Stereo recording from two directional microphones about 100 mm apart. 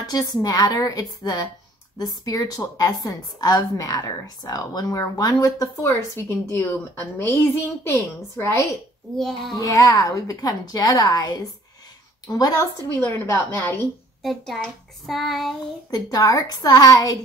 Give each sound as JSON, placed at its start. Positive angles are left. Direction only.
{"t": 0.0, "sound": "a woman's voice", "side_deg": 40}
{"t": 5.9, "sound": "a woman's voice", "side_deg": 20}
{"t": 9.1, "sound": "a child's voice", "side_deg": 0}
{"t": 9.6, "sound": "a woman's voice", "side_deg": 35}
{"t": 13.0, "sound": "a woman's voice", "side_deg": 20}
{"t": 14.2, "sound": "a child's voice", "side_deg": 0}
{"t": 15.9, "sound": "a woman's voice", "side_deg": 40}